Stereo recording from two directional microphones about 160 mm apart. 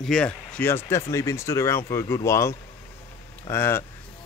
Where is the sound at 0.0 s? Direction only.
5° left (ahead or behind).